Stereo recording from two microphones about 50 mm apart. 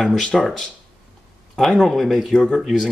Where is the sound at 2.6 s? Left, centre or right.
Centre.